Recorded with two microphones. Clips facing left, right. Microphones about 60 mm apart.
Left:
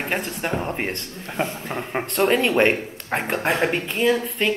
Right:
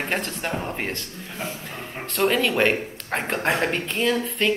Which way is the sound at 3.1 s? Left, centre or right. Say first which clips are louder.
Left 1 dB; centre.